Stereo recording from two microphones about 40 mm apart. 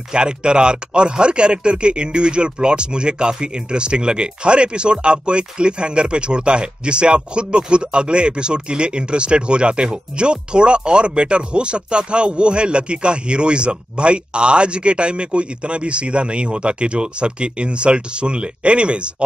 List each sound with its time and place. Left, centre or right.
0.1 s speech: right